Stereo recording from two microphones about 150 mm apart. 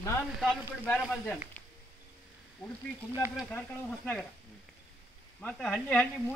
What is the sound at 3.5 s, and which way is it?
Speech, 10° left (ahead or behind).